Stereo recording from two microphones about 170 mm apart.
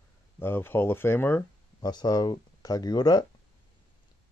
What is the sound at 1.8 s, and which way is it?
Speech, 25° left (ahead or behind).